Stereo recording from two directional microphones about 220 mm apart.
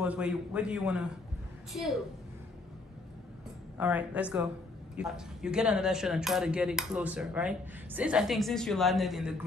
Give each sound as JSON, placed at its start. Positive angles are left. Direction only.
{"t": 0.0, "sound": "speech", "side_deg": -5}
{"t": 3.7, "sound": "a woman's voice", "side_deg": -5}